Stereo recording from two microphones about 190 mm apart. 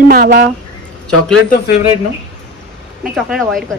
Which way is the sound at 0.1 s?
55° right (ahead or behind).